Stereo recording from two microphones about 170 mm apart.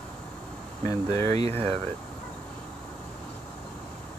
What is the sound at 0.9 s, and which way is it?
Speech, 20° left (ahead or behind).